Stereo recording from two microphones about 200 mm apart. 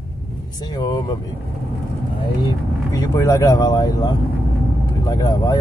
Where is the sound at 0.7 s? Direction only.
20° left (ahead or behind).